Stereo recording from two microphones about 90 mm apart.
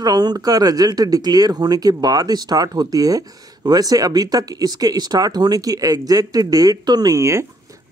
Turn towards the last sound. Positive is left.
turn(degrees=-35)  # may be behind; listen again after turning